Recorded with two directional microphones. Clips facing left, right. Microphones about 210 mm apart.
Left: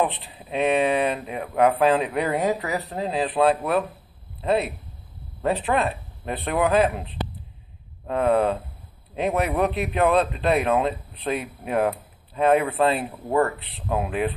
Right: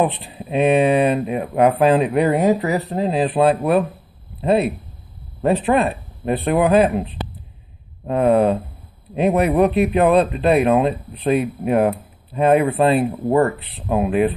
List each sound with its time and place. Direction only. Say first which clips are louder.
0.1 s speech: right 7 dB; 15° right (ahead or behind)
1.4 s speech: right 3 dB; 25° right (ahead or behind)
5.4 s speech: right 6 dB; 20° right (ahead or behind)
8.1 s speech: right 5 dB; 15° right (ahead or behind)